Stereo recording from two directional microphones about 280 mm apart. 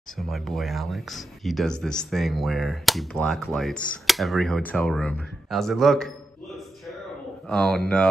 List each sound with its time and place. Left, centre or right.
0.3 s speech: centre
7.4 s speech: centre